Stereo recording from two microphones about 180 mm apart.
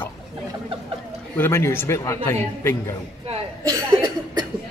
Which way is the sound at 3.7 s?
25° right (ahead or behind).